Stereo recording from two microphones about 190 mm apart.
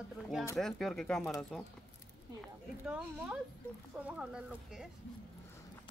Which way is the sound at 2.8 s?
5° right (ahead or behind).